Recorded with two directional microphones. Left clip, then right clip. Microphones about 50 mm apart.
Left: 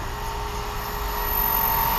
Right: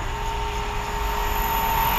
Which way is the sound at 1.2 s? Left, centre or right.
Centre.